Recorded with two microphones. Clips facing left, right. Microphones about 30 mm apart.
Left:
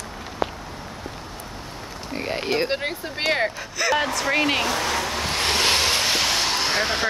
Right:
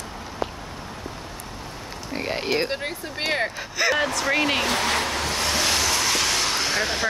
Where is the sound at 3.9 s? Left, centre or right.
Centre.